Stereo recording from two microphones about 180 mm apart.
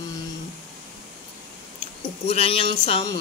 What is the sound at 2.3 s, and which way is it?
Speech, 35° left (ahead or behind).